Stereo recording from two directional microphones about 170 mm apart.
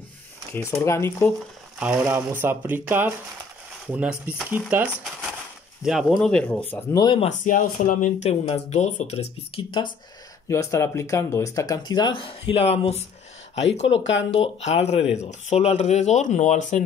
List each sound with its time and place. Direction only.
0.5 s speech: 15° left (ahead or behind)
1.8 s speech: 10° right (ahead or behind); by 7.0 s 10° left (ahead or behind)
7.0 s speech: 30° left (ahead or behind)
7.2 s speech: 50° left (ahead or behind); by 9.9 s 30° left (ahead or behind)
10.5 s speech: 15° left (ahead or behind); by 14.0 s 35° left (ahead or behind)
14.0 s speech: 90° left
14.6 s speech: 40° left (ahead or behind)